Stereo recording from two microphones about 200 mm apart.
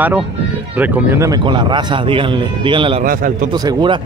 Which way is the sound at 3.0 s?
45° right (ahead or behind).